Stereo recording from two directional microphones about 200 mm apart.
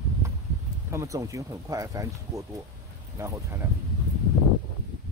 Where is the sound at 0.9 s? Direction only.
15° right (ahead or behind).